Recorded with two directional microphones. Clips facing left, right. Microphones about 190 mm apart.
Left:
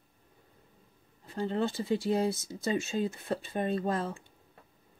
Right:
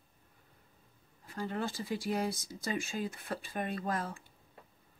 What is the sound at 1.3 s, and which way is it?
Speech, 25° left (ahead or behind).